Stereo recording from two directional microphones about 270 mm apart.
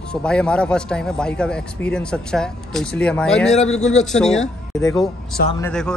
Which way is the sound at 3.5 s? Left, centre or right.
Left.